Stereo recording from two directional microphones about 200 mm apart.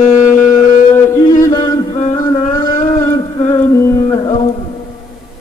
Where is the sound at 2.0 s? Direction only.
35° left (ahead or behind).